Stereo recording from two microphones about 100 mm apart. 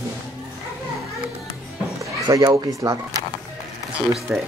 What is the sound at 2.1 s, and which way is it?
Speech, 35° right (ahead or behind).